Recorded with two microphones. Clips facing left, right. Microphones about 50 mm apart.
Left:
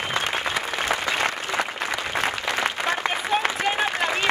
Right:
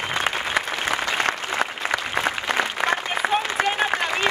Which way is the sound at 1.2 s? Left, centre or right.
Right.